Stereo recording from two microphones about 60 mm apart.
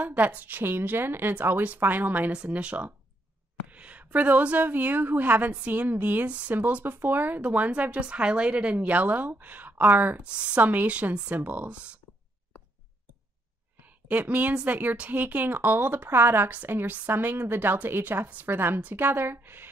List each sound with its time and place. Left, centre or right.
0.0 s speech: right
2.3 s speech: centre
6.5 s speech: right
10.2 s speech: centre
10.6 s speech: right
14.0 s speech: right